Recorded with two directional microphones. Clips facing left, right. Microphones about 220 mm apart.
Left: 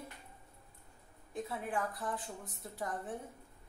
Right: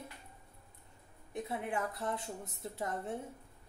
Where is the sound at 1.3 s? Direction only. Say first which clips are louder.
Right 1 dB; 20° right (ahead or behind).